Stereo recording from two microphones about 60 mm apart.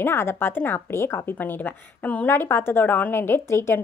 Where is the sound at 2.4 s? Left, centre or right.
Left.